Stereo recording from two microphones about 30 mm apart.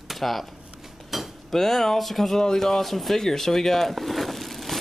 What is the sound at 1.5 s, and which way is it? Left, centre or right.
Speech, centre.